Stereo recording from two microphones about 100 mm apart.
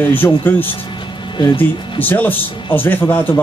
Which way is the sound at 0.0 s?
20° left (ahead or behind).